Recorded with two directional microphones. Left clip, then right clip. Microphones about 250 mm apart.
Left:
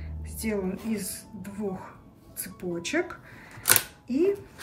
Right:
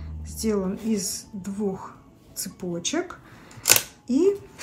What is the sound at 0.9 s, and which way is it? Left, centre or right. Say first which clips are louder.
Speech: right 6 dB; centre.